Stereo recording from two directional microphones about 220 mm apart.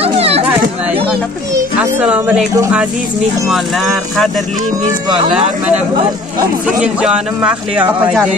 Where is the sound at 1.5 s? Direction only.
5° right (ahead or behind).